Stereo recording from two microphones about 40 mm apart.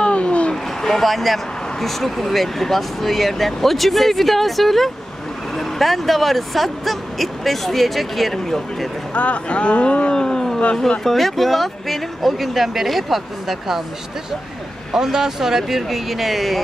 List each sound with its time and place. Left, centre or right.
0.0 s a sound: left
0.5 s speech: centre
9.1 s speech: left; by 13.8 s centre
14.9 s speech: centre